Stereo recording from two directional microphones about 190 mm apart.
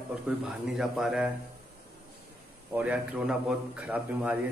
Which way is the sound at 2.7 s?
10° right (ahead or behind).